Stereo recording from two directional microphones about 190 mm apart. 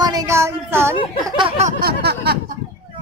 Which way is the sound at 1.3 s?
25° right (ahead or behind).